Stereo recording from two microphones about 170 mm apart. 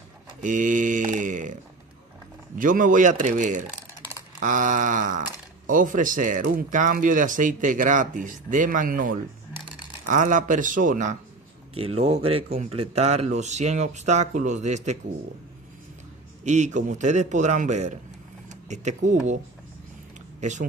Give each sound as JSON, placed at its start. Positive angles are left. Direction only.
{"t": 0.4, "sound": "mantra", "side_deg": -50}
{"t": 2.5, "sound": "speech", "side_deg": -50}
{"t": 11.7, "sound": "speech", "side_deg": -35}
{"t": 16.4, "sound": "speech", "side_deg": -45}